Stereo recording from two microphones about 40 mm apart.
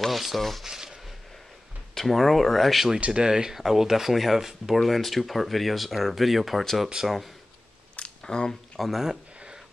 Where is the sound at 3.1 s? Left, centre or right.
Centre.